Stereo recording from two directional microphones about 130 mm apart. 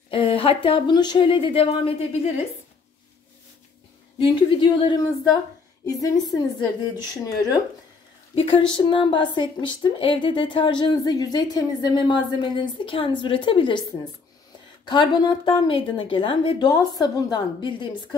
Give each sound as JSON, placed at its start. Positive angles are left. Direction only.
{"t": 0.1, "sound": "a woman's voice", "side_deg": 45}
{"t": 4.2, "sound": "a woman's voice", "side_deg": 45}
{"t": 5.9, "sound": "a woman's voice", "side_deg": 30}
{"t": 14.9, "sound": "a woman's voice", "side_deg": 35}